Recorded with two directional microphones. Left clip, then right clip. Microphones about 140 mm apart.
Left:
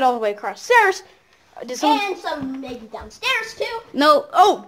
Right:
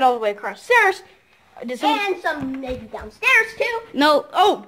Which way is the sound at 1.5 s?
5° left (ahead or behind).